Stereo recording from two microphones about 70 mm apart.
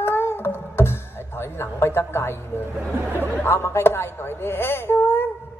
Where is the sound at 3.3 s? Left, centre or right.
Left.